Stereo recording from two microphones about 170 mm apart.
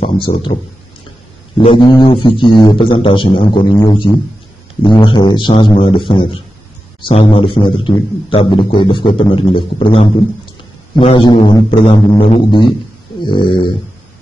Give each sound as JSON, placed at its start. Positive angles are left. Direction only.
{"t": 0.0, "sound": "speech", "side_deg": 30}
{"t": 1.6, "sound": "a man's voice", "side_deg": 30}